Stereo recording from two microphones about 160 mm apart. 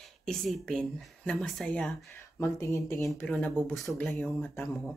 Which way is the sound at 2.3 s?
15° left (ahead or behind).